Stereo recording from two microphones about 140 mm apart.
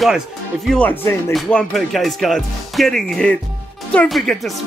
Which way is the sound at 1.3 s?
Centre (ahead or behind).